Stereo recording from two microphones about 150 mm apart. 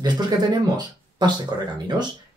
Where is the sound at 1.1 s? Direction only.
30° right (ahead or behind).